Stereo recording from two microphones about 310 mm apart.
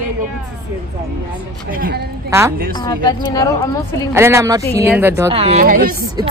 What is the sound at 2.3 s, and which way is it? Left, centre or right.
Speech, centre.